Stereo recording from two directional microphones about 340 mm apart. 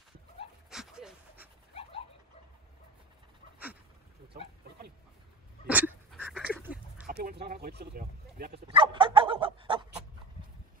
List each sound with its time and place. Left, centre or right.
0.7 s pant: centre
5.7 s duck: centre
7.1 s speech: right
8.6 s dog: centre